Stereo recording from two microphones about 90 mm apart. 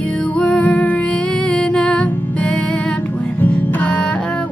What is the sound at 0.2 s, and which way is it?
Music, 15° left (ahead or behind).